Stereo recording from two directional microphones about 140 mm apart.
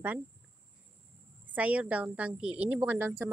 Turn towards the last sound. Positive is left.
turn(degrees=-15)  # may be behind; listen again after turning